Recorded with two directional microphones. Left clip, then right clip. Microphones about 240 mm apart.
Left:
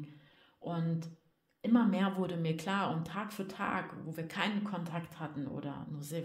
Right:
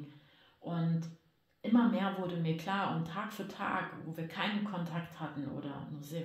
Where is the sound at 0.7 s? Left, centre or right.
Left.